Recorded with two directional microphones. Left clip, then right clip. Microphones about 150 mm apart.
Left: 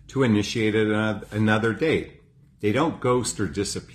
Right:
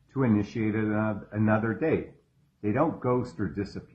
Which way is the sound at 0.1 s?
15° left (ahead or behind).